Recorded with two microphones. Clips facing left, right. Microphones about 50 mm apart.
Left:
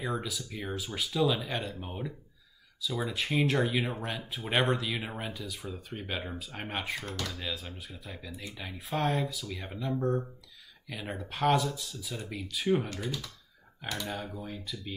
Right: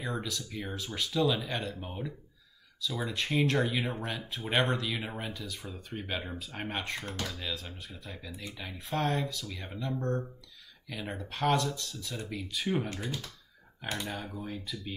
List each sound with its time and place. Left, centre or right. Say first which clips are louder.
0.0 s speech: left 1 dB; centre
7.1 s speech: even; centre
7.3 s speech: left 1 dB; centre
14.0 s speech: left 1 dB; centre